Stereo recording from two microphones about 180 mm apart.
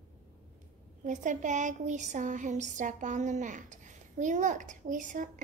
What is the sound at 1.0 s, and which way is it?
Speech, 45° right (ahead or behind).